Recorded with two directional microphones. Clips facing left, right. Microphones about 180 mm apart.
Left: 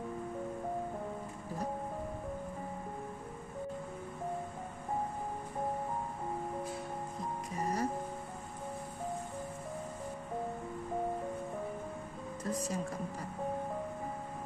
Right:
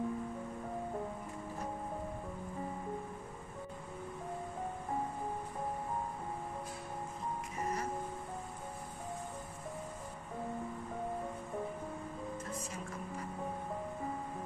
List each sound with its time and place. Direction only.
7.5 s music: 35° left (ahead or behind)
12.4 s music: 35° left (ahead or behind)